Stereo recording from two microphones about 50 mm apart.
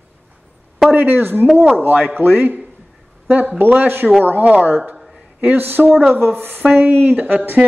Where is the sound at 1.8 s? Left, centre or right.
Right.